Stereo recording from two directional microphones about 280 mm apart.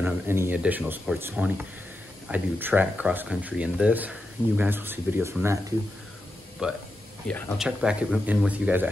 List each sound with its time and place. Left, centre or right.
0.0 s speech: centre
6.6 s speech: centre